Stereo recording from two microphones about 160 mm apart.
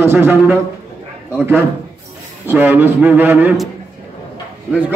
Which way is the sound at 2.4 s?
15° right (ahead or behind).